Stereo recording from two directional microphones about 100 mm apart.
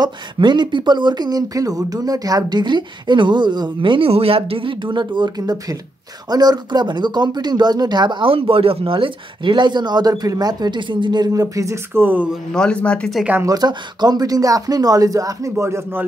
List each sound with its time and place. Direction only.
0.0 s speech: 50° right (ahead or behind)
4.1 s speech: 75° right (ahead or behind); by 12.3 s 20° right (ahead or behind)
12.5 s speech: 10° left (ahead or behind)
13.5 s speech: 45° right (ahead or behind)
15.6 s speech: 25° right (ahead or behind)